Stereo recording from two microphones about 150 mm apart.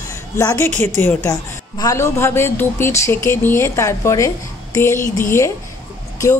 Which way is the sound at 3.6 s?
20° left (ahead or behind).